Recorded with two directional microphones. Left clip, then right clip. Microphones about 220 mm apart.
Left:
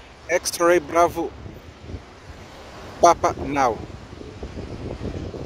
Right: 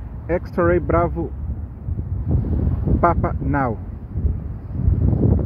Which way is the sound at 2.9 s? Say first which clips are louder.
Left 4 dB; 25° left (ahead or behind).